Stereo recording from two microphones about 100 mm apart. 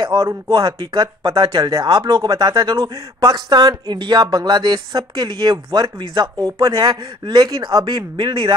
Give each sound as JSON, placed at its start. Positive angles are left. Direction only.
{"t": 0.0, "sound": "speech", "side_deg": -40}
{"t": 1.6, "sound": "speech", "side_deg": -35}
{"t": 2.0, "sound": "speech", "side_deg": -50}
{"t": 7.8, "sound": "speech", "side_deg": -50}